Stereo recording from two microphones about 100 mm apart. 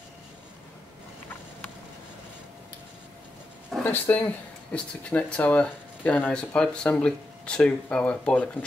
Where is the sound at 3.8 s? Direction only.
20° left (ahead or behind).